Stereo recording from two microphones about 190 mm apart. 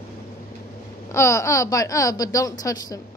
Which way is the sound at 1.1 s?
15° left (ahead or behind).